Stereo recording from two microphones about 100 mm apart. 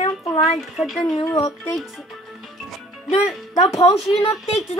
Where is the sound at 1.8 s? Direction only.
Centre (ahead or behind).